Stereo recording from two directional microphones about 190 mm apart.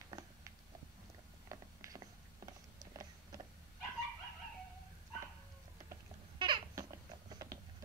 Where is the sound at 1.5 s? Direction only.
20° right (ahead or behind).